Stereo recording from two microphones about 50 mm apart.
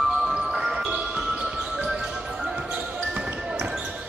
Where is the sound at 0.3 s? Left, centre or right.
Centre.